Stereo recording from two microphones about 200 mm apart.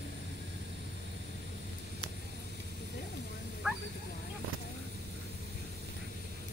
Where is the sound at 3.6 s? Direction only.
5° right (ahead or behind).